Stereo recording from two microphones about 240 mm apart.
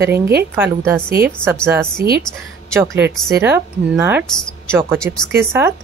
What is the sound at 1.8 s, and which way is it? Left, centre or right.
Speech, right.